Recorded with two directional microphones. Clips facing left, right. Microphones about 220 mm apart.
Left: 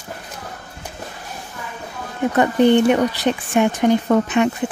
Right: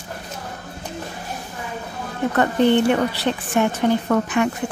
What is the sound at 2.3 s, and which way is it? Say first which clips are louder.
Speech: left 3 dB; 15° left (ahead or behind).